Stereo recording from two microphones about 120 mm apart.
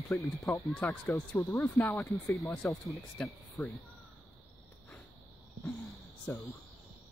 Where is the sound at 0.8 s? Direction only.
10° left (ahead or behind).